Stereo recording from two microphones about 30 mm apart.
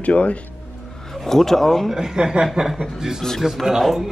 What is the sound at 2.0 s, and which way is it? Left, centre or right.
Speech, right.